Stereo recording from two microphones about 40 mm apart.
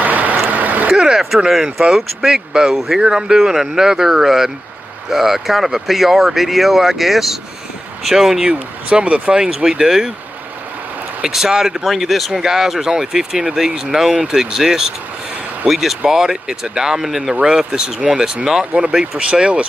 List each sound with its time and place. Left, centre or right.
0.0 s vehicle: right
0.5 s a sound: right
0.9 s speech: centre
8.9 s speech: right
9.7 s speech: centre
11.2 s speech: centre; by 19.6 s right